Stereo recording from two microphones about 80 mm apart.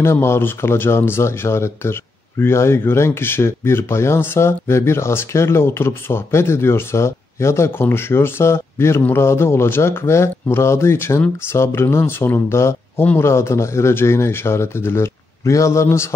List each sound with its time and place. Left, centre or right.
0.0 s speech: left